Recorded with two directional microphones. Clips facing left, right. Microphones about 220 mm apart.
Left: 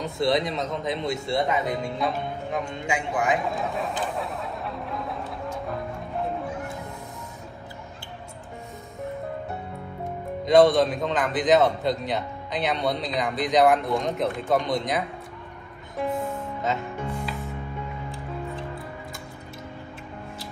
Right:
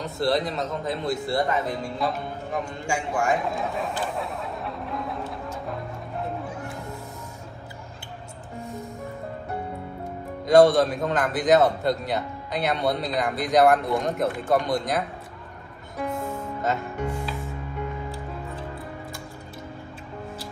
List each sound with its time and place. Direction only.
0.0 s a man's voice: centre (ahead or behind)
3.1 s a sound: centre (ahead or behind)
10.4 s a man's voice: centre (ahead or behind)
16.0 s music: centre (ahead or behind)